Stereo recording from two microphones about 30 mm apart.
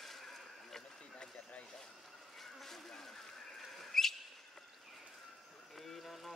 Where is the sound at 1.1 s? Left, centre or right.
Left.